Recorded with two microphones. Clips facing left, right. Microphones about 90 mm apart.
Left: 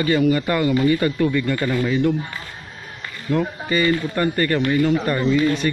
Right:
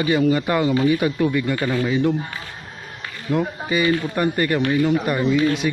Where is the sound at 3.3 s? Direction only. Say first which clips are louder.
Even; 15° right (ahead or behind).